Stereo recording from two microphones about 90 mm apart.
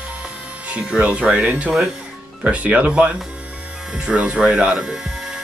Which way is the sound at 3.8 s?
10° right (ahead or behind).